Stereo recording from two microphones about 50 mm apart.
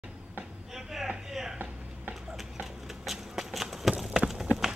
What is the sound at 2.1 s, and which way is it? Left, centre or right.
Clip-clop, centre.